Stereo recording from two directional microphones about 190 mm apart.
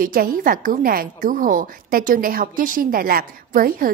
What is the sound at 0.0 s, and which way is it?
A woman's voice, 45° right (ahead or behind).